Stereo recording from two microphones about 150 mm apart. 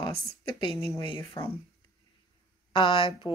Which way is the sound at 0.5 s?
35° left (ahead or behind).